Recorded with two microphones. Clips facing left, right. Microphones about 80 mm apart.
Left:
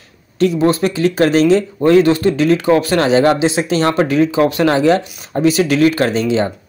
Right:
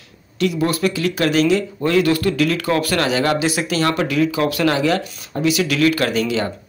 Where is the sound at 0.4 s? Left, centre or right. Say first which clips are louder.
Left 5 dB; left.